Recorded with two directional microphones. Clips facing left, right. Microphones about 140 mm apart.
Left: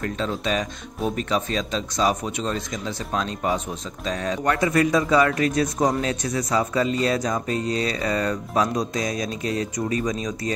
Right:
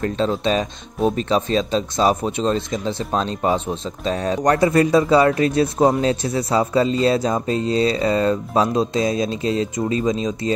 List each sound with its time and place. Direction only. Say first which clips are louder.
0.0 s speech: right 6 dB; 30° right (ahead or behind)